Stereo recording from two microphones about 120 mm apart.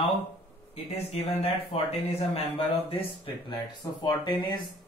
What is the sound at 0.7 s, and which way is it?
Speech, 55° left (ahead or behind).